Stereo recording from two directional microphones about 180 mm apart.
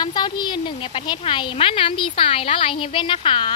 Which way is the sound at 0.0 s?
25° left (ahead or behind).